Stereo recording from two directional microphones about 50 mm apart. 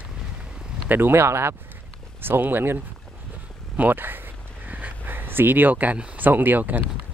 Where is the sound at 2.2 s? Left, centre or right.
Right.